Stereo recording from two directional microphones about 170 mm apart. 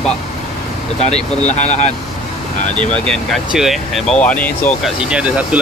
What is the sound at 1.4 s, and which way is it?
Speech, 40° left (ahead or behind).